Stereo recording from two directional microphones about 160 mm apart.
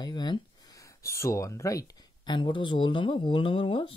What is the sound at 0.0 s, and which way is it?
Speech, 30° left (ahead or behind).